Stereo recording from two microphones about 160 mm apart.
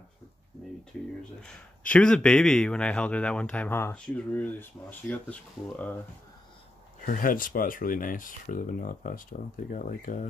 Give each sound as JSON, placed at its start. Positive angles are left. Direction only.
{"t": 1.4, "sound": "speech", "side_deg": 5}
{"t": 7.1, "sound": "speech", "side_deg": 60}